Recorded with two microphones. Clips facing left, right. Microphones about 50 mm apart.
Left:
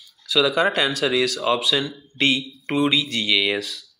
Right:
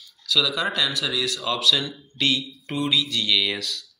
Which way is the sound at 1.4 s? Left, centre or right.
Left.